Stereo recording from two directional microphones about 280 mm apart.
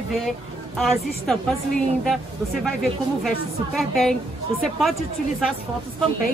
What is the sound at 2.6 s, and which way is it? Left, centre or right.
A woman's voice, centre.